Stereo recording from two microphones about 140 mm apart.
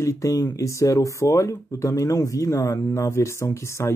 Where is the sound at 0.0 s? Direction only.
20° left (ahead or behind).